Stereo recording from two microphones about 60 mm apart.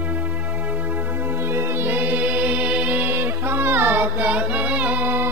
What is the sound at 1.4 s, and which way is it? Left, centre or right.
Music, right.